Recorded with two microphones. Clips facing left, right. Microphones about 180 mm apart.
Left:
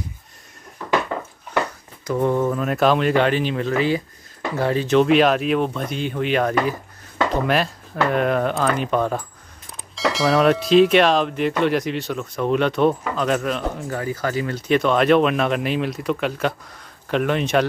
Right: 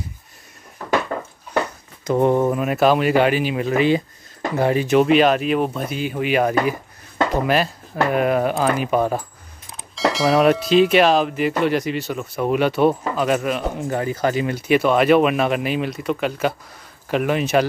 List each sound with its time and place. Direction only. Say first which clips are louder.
2.0 s speech: right 3 dB; 25° right (ahead or behind)
2.5 s speech: right 1 dB; 5° right (ahead or behind)
13.8 s speech: right 4 dB; 20° right (ahead or behind)
14.7 s speech: right 1 dB; 5° right (ahead or behind)